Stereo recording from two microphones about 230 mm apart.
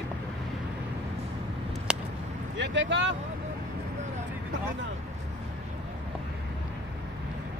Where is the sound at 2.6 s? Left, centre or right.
Right.